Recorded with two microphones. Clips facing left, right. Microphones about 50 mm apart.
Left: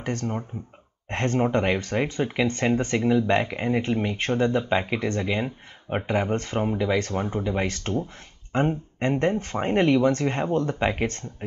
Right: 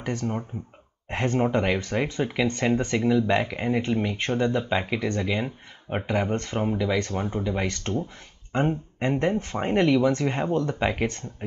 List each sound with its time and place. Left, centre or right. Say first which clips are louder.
0.0 s speech: even; centre